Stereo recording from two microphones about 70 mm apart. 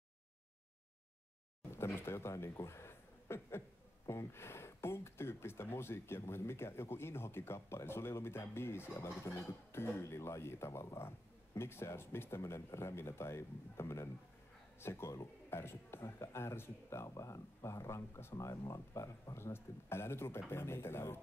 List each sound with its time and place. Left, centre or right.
1.7 s speech: left
8.9 s speech: left
17.1 s speech: left